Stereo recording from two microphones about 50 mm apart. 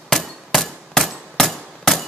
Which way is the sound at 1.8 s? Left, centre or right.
Centre.